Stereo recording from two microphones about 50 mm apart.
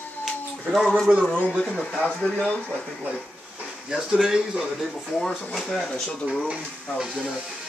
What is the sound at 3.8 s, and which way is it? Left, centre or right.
Speech, centre.